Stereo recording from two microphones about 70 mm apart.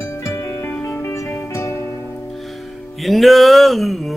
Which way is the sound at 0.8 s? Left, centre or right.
Left.